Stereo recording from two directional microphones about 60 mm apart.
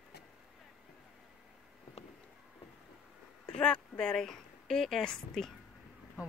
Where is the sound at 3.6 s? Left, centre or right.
Centre.